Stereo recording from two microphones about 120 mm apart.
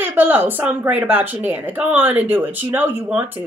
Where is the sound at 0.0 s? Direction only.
15° right (ahead or behind).